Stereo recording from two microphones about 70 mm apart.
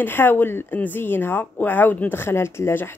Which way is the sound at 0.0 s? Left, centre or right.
Left.